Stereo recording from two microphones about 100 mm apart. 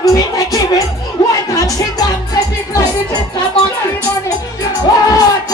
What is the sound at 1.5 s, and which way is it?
Music, 35° left (ahead or behind).